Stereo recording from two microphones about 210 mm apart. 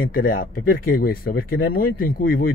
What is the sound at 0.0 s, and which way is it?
Speech, 45° left (ahead or behind).